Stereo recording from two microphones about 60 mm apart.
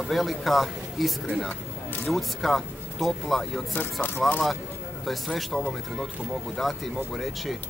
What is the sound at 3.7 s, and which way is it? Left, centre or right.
Speech, left.